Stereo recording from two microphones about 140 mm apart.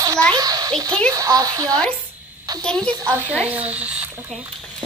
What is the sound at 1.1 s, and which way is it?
Speech, 25° right (ahead or behind).